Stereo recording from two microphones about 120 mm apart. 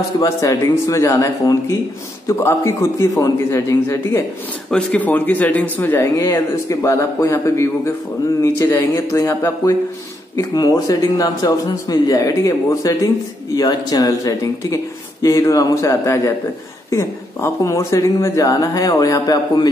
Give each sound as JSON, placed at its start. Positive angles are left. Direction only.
{"t": 0.2, "sound": "speech", "side_deg": 25}
{"t": 4.6, "sound": "speech", "side_deg": 10}
{"t": 10.5, "sound": "speech", "side_deg": 35}